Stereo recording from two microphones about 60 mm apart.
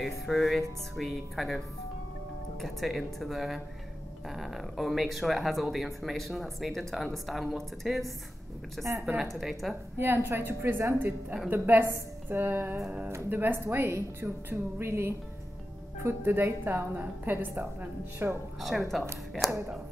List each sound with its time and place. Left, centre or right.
0.0 s speech: centre
2.6 s speech: centre
9.9 s a woman's voice: right
11.0 s a woman's voice: right
18.6 s speech: centre